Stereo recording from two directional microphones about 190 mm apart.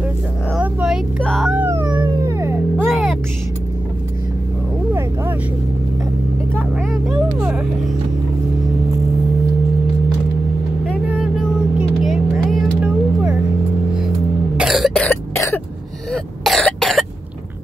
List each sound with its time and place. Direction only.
0.5 s vehicle: 5° right (ahead or behind)
1.2 s cat: centre (ahead or behind)
2.0 s dog: 20° right (ahead or behind)
2.8 s music: centre (ahead or behind)
6.9 s vehicle: 5° right (ahead or behind)
12.0 s vehicle: centre (ahead or behind)
14.6 s cough: centre (ahead or behind)
15.0 s cough: 15° left (ahead or behind)
16.1 s throat clearing: centre (ahead or behind)